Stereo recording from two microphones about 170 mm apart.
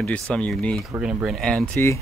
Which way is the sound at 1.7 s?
15° left (ahead or behind).